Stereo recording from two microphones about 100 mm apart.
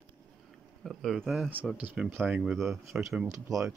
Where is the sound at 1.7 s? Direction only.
10° right (ahead or behind).